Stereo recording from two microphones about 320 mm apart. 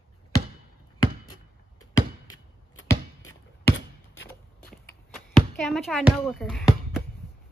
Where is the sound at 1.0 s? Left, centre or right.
Left.